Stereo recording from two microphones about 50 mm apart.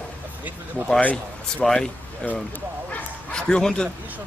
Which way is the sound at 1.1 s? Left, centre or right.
Centre.